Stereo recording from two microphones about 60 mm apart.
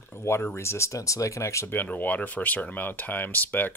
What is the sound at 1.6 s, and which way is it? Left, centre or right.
Speech, left.